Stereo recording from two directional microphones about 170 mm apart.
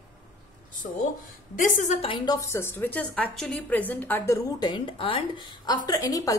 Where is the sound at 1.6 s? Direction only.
45° left (ahead or behind).